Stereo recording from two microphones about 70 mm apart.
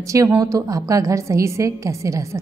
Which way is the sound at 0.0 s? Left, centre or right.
Right.